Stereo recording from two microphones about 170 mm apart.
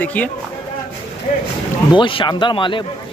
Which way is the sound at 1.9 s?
30° left (ahead or behind).